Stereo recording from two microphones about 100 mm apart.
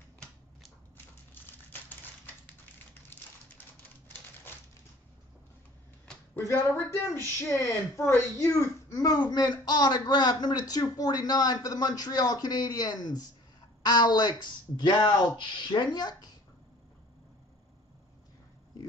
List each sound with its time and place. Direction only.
0.9 s typewriter: 20° left (ahead or behind)
6.3 s speech: 30° left (ahead or behind); by 16.3 s 45° left (ahead or behind)